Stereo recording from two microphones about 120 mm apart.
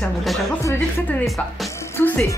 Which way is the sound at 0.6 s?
25° left (ahead or behind).